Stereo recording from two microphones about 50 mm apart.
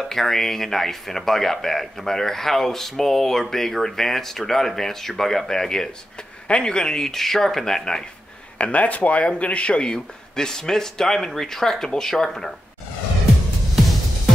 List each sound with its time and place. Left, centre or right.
0.1 s speech: centre
8.5 s speech: left; by 12.5 s centre